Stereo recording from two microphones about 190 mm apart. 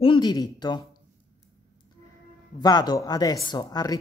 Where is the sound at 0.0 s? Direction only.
25° left (ahead or behind).